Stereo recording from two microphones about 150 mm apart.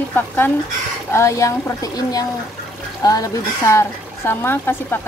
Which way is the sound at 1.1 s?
20° left (ahead or behind).